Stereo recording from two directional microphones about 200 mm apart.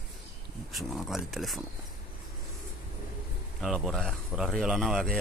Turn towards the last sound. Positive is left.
turn(degrees=0)  # may be behind; listen again after turning